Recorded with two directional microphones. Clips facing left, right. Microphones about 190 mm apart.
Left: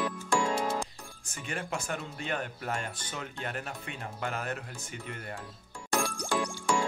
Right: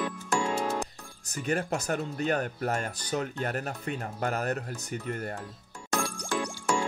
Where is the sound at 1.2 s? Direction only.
40° right (ahead or behind).